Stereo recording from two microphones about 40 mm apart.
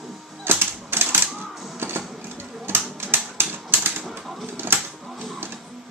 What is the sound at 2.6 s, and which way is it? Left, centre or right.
Typewriter, right.